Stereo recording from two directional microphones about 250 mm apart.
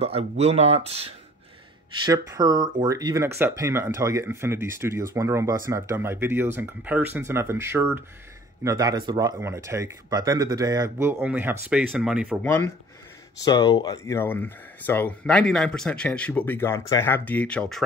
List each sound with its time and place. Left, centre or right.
0.0 s speech: right
2.0 s speech: centre
12.4 s speech: centre